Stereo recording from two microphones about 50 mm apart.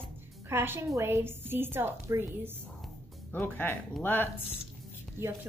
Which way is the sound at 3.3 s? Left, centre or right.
Left.